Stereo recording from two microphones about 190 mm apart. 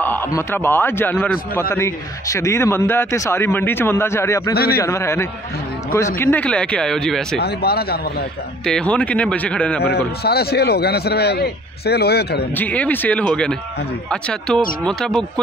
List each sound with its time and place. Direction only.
0.0 s a man's voice: 10° left (ahead or behind)
4.6 s a man's voice: 55° left (ahead or behind)
4.8 s a man's voice: 15° left (ahead or behind)
7.3 s a man's voice: 55° left (ahead or behind)
8.6 s speech: 5° left (ahead or behind)
9.8 s a man's voice: 55° left (ahead or behind)
12.5 s a man's voice: 10° left (ahead or behind)